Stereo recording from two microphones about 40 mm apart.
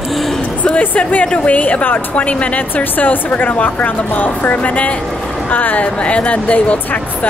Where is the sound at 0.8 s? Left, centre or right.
Left.